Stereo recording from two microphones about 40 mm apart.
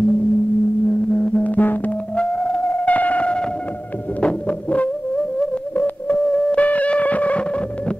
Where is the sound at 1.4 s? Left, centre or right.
Left.